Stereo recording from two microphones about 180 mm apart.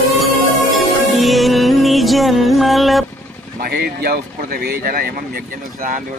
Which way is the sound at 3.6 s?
60° right (ahead or behind).